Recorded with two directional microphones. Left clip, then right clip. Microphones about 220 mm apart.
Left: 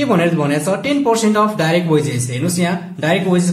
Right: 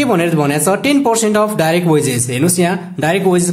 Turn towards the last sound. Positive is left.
turn(degrees=-40)  # may be behind; listen again after turning